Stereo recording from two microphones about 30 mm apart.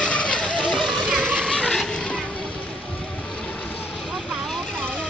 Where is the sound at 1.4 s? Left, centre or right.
Left.